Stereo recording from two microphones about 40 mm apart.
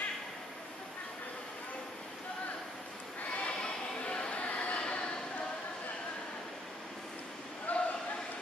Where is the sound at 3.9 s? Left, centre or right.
Left.